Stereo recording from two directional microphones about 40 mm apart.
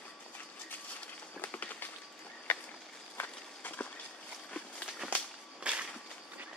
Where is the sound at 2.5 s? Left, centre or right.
Left.